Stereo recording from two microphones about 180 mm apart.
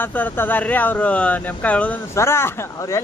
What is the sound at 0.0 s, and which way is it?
Speech, 10° left (ahead or behind).